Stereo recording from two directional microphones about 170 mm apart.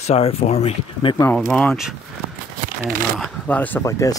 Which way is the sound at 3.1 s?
5° left (ahead or behind).